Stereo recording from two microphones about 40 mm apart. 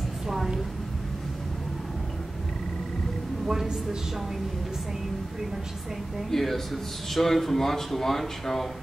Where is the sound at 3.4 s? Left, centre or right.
Centre.